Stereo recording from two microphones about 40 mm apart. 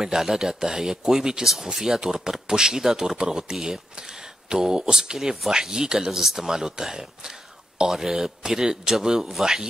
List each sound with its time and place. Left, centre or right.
0.0 s speech: centre